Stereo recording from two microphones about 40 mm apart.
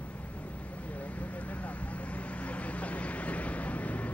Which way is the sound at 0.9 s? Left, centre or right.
Left.